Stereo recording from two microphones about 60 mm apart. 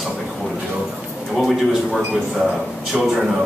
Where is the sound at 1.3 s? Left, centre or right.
Centre.